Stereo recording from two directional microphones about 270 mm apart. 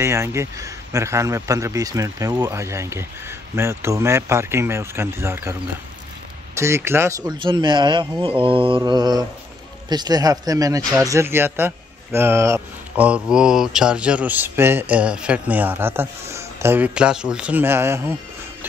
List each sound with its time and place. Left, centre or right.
0.0 s speech: centre
8.4 s mantra: centre
9.8 s speech: centre